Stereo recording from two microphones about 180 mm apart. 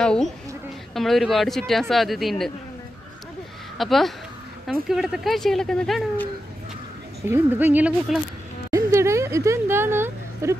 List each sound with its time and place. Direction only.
0.0 s a woman's voice: 5° left (ahead or behind)
3.7 s speech: centre (ahead or behind)
7.2 s speech: 10° right (ahead or behind)
8.7 s a sound: 15° right (ahead or behind)